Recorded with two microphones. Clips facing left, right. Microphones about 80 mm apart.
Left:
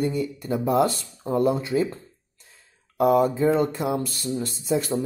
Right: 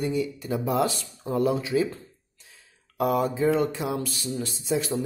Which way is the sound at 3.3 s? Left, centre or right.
Left.